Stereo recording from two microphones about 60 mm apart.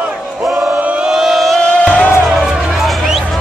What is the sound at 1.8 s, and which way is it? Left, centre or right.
Music, left.